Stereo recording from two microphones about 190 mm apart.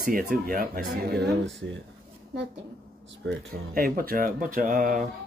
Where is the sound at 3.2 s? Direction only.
70° right (ahead or behind).